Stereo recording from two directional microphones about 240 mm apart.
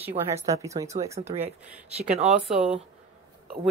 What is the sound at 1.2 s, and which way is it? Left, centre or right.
Speech, right.